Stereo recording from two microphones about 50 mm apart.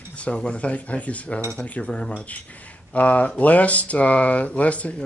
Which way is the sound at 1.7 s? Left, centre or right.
Left.